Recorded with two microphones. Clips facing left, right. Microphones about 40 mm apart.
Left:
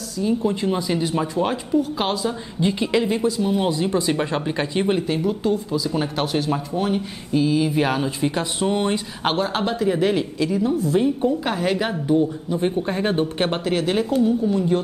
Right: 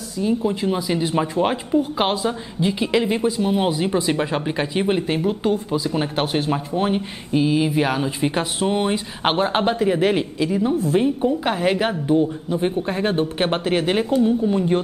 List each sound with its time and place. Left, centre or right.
0.2 s speech: centre
1.0 s speech: centre
2.6 s speech: centre
3.1 s speech: right
5.0 s speech: right
7.7 s speech: centre
8.2 s speech: centre
9.2 s speech: right
11.1 s speech: centre
12.5 s speech: centre
13.5 s speech: right